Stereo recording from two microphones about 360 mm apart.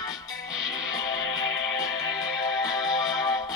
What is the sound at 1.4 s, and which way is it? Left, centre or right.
Music, right.